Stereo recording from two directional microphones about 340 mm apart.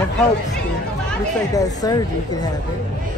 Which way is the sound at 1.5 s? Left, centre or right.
Centre.